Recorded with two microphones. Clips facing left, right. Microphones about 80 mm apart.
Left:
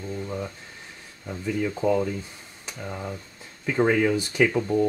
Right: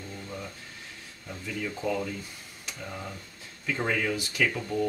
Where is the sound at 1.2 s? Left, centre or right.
Left.